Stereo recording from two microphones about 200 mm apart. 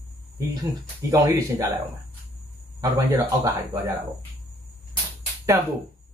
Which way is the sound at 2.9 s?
15° right (ahead or behind).